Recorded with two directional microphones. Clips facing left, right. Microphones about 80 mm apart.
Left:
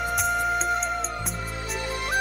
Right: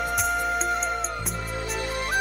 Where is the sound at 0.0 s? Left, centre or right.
Centre.